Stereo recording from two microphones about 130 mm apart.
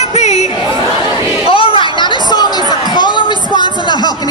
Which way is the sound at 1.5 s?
45° left (ahead or behind).